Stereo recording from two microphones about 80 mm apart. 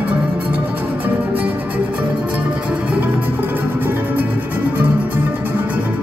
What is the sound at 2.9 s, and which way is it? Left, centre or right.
Music, right.